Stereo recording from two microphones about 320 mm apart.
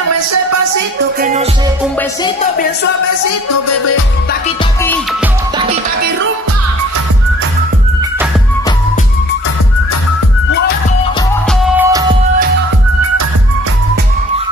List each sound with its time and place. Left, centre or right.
0.1 s music: right
1.2 s music: right
11.6 s music: centre